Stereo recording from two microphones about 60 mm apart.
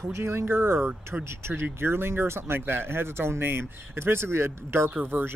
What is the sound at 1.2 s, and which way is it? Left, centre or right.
Speech, right.